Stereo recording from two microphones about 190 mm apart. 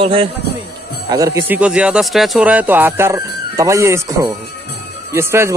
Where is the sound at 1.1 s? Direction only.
15° right (ahead or behind).